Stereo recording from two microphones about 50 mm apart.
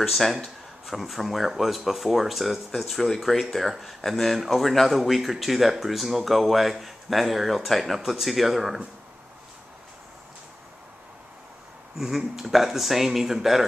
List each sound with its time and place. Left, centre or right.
0.1 s speech: centre
12.0 s speech: centre